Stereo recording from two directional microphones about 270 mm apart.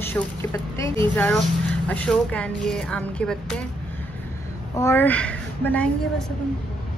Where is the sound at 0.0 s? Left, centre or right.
Centre.